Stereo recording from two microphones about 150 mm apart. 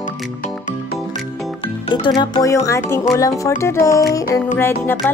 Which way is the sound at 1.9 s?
30° left (ahead or behind).